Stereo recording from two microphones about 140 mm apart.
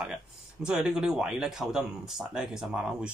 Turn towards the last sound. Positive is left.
turn(degrees=-5)  # may be behind; listen again after turning